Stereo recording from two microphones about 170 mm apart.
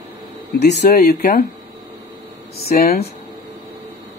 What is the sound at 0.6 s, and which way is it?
Speech, 80° left.